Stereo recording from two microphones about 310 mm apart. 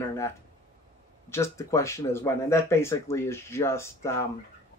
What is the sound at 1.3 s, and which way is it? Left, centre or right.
Speech, centre.